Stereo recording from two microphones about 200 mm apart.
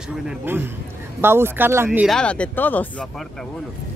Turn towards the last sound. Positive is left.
turn(degrees=10)  # may be behind; listen again after turning